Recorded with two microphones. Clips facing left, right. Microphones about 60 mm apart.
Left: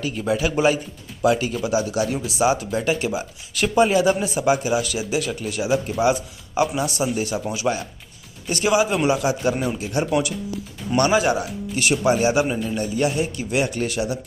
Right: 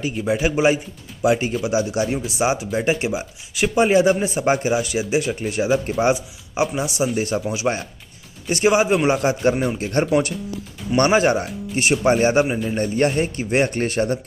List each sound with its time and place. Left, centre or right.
0.3 s speech: right
6.1 s speech: centre
7.2 s speech: right
9.9 s speech: right
12.1 s speech: right